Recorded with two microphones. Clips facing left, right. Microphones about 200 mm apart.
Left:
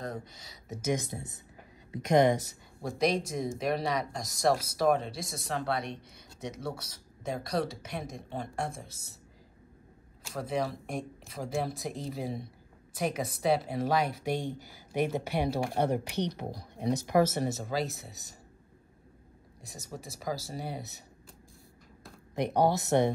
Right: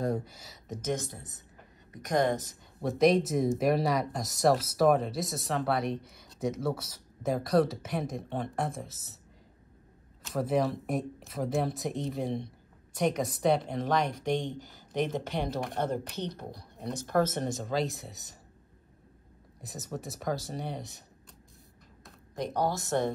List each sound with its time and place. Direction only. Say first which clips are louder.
0.0 s speech: right 7 dB; 5° right (ahead or behind)
0.7 s speech: left 1 dB; 10° left (ahead or behind)
1.9 s speech: left 4 dB; 25° left (ahead or behind)
2.8 s speech: right 5 dB; centre (ahead or behind)
10.2 s speech: right 4 dB; centre (ahead or behind)
19.6 s speech: right 5 dB; centre (ahead or behind)
22.3 s speech: left 4 dB; 65° left (ahead or behind)